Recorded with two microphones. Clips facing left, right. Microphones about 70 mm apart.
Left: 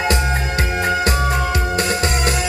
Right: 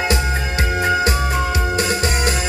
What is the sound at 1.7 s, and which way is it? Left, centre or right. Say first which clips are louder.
Music: even; left.